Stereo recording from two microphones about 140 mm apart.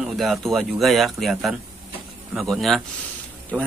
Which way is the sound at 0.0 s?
Centre (ahead or behind).